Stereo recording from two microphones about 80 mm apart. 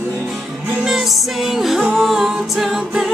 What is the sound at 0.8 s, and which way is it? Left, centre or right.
Music, centre.